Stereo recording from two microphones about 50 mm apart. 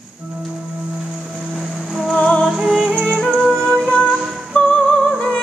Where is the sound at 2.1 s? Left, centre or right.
Left.